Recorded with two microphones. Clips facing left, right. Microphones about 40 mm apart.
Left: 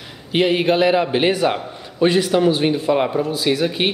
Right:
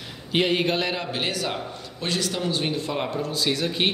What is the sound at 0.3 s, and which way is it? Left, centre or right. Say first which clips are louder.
A man's voice: left 6 dB; centre.